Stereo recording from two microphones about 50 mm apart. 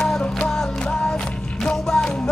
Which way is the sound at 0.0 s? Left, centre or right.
Centre.